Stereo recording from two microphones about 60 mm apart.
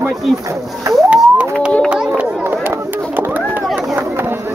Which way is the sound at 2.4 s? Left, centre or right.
Right.